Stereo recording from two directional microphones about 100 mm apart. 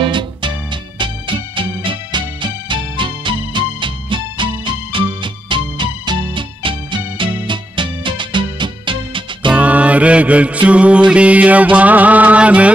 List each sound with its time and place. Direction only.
0.0 s music: 55° right (ahead or behind)
9.5 s music: 15° right (ahead or behind)